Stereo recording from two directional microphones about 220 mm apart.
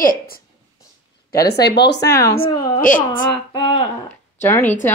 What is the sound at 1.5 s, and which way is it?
Speech, 50° left (ahead or behind).